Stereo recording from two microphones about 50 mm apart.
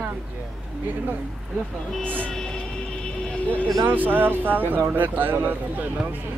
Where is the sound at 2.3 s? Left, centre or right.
Centre.